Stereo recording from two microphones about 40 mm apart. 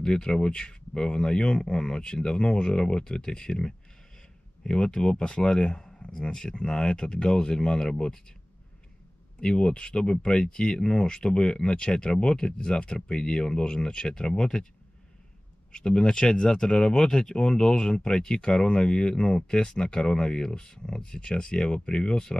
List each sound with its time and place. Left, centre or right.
0.0 s speech: left
9.4 s speech: left
15.7 s speech: left